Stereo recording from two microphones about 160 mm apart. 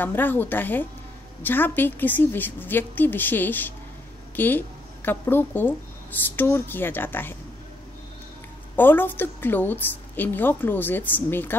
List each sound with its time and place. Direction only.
0.0 s a woman's voice: 10° left (ahead or behind)
8.7 s a woman's voice: 10° left (ahead or behind)